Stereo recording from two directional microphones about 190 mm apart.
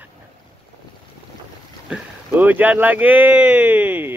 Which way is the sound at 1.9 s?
10° right (ahead or behind).